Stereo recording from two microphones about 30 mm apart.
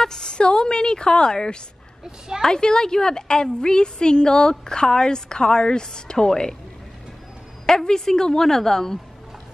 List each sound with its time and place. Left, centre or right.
0.0 s a sound: left
0.4 s a woman's voice: left
2.0 s a woman's voice: centre
2.4 s a woman's voice: left
7.6 s a woman's voice: centre